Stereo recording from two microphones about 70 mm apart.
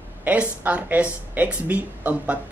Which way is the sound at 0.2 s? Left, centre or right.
Right.